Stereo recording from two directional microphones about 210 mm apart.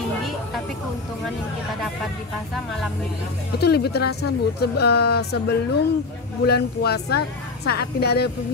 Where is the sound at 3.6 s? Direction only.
50° left (ahead or behind).